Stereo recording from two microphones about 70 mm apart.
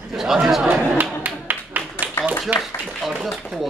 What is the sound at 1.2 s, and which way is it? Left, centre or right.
Clapping, right.